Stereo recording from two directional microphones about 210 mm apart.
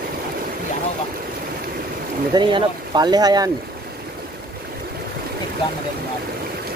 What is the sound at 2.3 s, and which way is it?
Speech, 20° right (ahead or behind).